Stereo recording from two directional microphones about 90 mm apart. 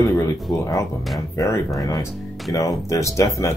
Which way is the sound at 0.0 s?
35° left (ahead or behind).